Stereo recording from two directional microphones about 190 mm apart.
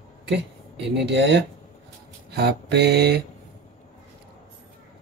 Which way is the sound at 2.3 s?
60° right (ahead or behind).